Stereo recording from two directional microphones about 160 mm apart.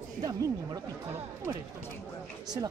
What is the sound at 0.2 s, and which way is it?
Speech, 20° right (ahead or behind).